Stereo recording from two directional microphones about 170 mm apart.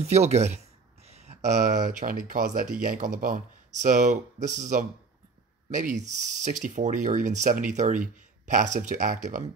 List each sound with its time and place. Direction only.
0.0 s speech: 40° right (ahead or behind)